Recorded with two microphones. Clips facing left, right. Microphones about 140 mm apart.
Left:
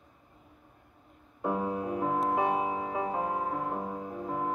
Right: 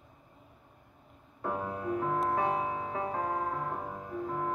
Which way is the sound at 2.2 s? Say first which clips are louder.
Left 2 dB; 15° left (ahead or behind).